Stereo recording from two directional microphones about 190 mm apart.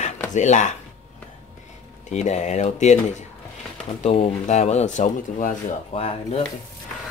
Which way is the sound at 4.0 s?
35° left (ahead or behind).